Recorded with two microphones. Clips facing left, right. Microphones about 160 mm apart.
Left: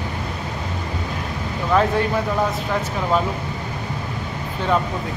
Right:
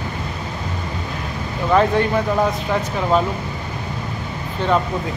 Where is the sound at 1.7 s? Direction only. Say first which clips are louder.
Right 2 dB; centre (ahead or behind).